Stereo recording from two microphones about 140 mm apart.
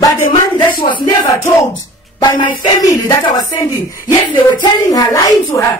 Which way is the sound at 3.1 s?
25° left (ahead or behind).